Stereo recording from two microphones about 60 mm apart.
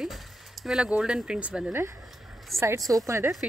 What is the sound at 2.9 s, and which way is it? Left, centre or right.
Speech, right.